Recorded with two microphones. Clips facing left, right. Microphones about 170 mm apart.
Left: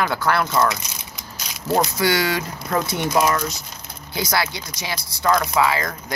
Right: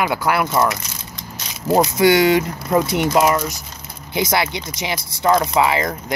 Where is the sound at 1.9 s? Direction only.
20° right (ahead or behind).